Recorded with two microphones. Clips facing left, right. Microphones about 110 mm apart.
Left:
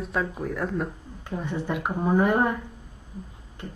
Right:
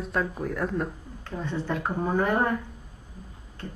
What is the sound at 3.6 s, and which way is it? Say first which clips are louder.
Music: even; 15° left (ahead or behind).